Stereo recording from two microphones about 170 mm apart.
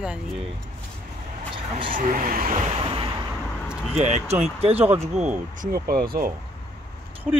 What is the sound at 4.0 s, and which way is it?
Speech, 40° right (ahead or behind).